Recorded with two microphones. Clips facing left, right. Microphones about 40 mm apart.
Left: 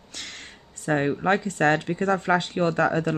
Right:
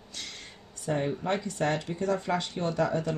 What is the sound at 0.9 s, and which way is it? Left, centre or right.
Speech, left.